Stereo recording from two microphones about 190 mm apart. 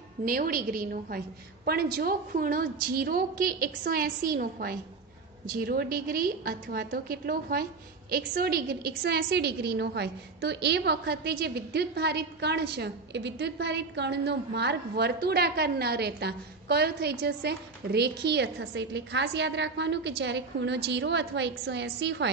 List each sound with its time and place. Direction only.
0.2 s a woman's voice: 50° right (ahead or behind); by 22.3 s 65° right (ahead or behind)